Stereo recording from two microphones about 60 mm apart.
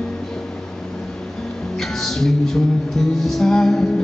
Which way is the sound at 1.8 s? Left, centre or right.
Centre.